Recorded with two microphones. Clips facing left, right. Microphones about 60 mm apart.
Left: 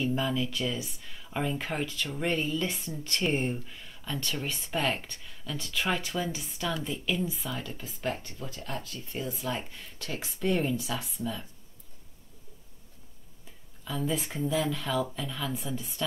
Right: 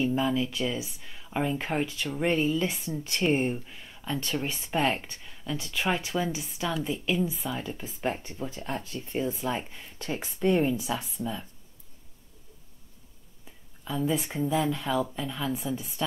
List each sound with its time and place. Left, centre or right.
0.0 s speech: centre
13.8 s speech: centre